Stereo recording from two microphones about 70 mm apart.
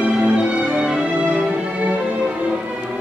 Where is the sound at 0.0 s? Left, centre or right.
Centre.